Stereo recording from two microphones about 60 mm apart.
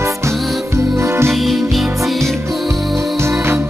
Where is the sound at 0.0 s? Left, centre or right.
Right.